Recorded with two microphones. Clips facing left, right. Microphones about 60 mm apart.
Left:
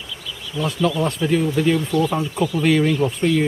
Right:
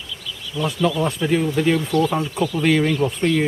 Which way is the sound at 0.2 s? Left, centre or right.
Centre.